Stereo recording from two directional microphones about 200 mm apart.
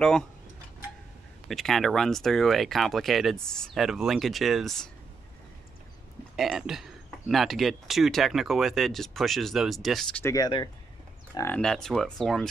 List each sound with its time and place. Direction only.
1.5 s speech: centre (ahead or behind)
6.3 s speech: centre (ahead or behind)
10.2 s speech: 20° left (ahead or behind)
11.3 s speech: 10° left (ahead or behind)